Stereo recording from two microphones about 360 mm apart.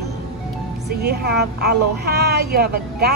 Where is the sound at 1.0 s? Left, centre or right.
Right.